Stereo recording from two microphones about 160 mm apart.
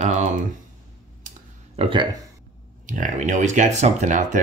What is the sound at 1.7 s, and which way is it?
Speech, 35° right (ahead or behind).